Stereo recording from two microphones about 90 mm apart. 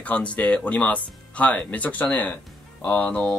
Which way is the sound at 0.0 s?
15° left (ahead or behind).